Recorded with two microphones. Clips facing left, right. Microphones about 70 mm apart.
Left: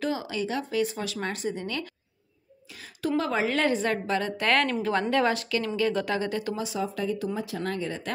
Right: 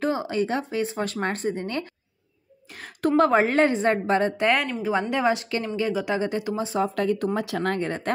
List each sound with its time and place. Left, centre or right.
0.0 s speech: right
1.0 s a woman's voice: right
2.7 s a woman's voice: right
6.8 s speech: right